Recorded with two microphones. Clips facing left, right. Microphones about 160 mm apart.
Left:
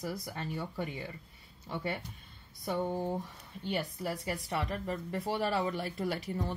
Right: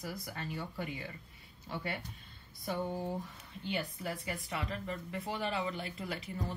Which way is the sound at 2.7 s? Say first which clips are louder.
Left 3 dB; 25° left (ahead or behind).